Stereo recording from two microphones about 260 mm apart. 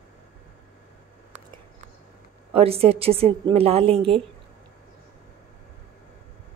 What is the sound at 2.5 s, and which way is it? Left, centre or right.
A woman's voice, right.